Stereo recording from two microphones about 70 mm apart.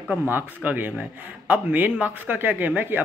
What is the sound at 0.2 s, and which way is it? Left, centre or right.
Speech, right.